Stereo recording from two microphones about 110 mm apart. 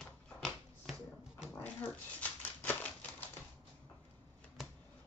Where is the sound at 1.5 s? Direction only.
15° left (ahead or behind).